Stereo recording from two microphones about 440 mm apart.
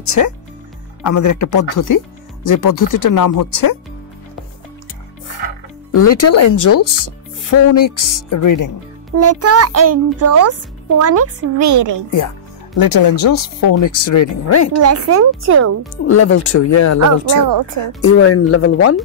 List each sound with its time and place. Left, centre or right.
0.0 s speech: left
5.9 s speech: left
9.1 s a child's voice: right
12.7 s speech: left
14.8 s a child's voice: right
16.1 s speech: left
17.3 s speech: right
18.0 s speech: left